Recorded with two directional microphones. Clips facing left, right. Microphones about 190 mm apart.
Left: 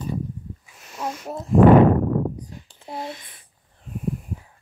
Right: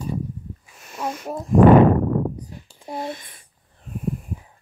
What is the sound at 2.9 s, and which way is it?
Speech, 50° right (ahead or behind).